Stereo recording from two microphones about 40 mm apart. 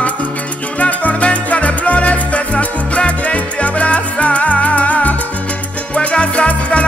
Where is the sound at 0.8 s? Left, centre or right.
Left.